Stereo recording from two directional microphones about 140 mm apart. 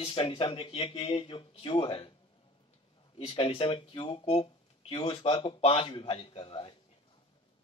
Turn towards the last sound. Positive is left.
turn(degrees=40)  # may be behind; listen again after turning